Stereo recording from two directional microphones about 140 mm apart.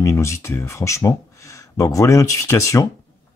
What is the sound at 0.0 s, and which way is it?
Speech, 20° left (ahead or behind).